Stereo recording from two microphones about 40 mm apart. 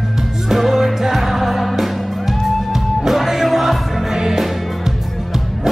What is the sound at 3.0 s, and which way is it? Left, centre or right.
Music, centre.